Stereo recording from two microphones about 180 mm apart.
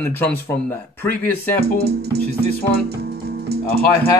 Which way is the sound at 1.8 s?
60° right (ahead or behind).